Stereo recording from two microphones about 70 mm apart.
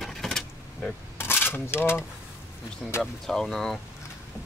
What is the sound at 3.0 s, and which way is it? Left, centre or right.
Speech, centre.